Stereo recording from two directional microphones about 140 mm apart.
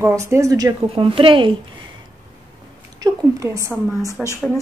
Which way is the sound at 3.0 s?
25° right (ahead or behind).